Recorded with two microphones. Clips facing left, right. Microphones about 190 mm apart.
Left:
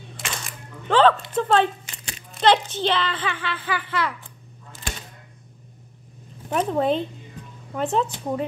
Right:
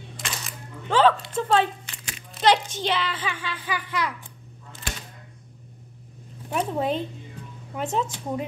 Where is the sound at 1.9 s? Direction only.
30° left (ahead or behind).